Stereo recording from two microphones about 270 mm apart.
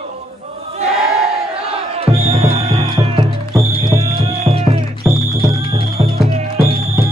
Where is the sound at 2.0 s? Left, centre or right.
Right.